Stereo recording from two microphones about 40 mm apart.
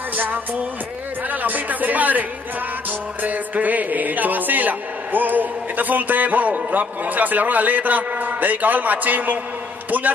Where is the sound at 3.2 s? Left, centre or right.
Right.